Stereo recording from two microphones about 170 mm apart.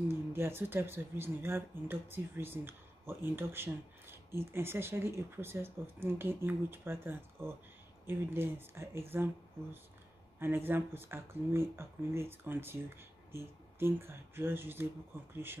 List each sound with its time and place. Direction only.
0.3 s speech: 15° right (ahead or behind)